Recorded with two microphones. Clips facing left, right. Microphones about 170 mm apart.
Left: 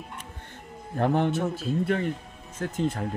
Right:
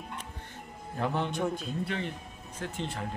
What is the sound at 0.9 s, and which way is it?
Speech, 55° left (ahead or behind).